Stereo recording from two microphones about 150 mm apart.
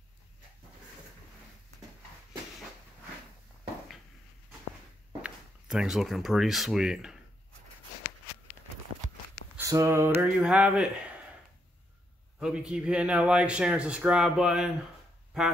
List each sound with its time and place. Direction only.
5.2 s speech: 5° right (ahead or behind)
9.6 s a sound: 20° right (ahead or behind)
10.2 s speech: 10° right (ahead or behind)
12.4 s speech: 5° right (ahead or behind)